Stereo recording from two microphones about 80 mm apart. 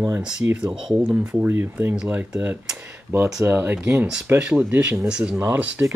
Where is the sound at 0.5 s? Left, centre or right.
Centre.